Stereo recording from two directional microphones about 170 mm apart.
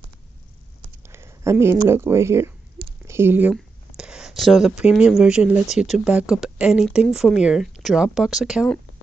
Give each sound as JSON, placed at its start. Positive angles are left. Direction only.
{"t": 1.0, "sound": "speech", "side_deg": -15}